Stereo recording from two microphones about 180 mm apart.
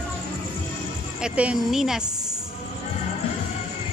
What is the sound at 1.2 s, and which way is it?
Speech, 5° right (ahead or behind).